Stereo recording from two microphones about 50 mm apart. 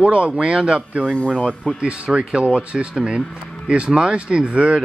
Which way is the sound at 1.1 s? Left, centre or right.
Left.